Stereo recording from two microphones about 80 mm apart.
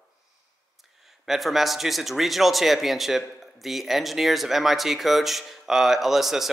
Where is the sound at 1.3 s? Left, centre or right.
Centre.